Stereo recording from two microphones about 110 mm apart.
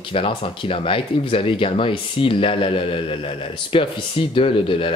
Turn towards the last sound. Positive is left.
turn(degrees=55)  # may be behind; listen again after turning